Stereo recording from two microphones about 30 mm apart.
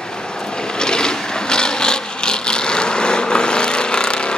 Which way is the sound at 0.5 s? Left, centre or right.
Left.